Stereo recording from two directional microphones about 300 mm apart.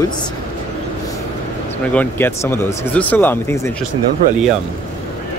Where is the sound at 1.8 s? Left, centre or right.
Centre.